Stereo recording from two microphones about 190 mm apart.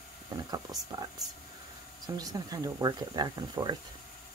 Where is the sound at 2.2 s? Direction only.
20° right (ahead or behind).